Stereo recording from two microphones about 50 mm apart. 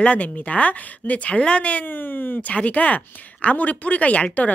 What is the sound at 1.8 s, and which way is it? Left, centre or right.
Speech, left.